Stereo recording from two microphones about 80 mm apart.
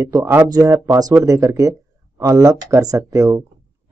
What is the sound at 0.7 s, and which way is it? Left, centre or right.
Speech, right.